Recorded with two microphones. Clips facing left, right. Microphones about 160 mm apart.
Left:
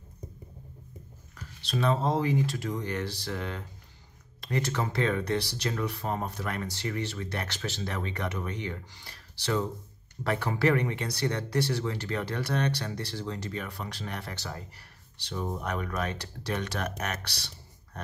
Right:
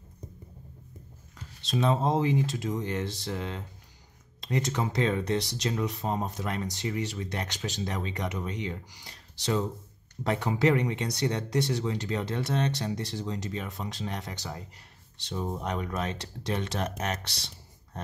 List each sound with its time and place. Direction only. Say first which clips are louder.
1.3 s speech: right 2 dB; 20° right (ahead or behind)
17.9 s pig: right 1 dB; 25° right (ahead or behind)